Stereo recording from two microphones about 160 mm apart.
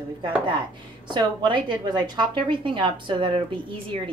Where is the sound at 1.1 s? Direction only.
30° right (ahead or behind).